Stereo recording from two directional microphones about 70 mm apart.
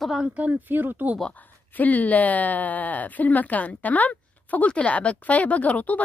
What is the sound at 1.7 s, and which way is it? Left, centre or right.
Speech, left.